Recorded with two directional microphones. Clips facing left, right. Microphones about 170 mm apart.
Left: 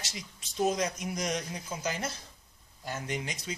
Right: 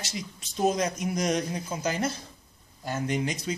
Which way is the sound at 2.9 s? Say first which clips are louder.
Right 7 dB; 45° right (ahead or behind).